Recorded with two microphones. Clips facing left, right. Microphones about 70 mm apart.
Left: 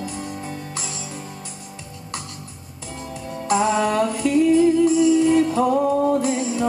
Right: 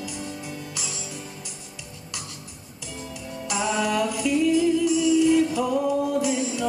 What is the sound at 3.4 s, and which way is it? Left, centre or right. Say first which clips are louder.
Music: left 6 dB; left.